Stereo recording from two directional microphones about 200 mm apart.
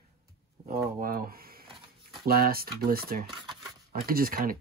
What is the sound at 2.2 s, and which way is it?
Speech, 50° right (ahead or behind).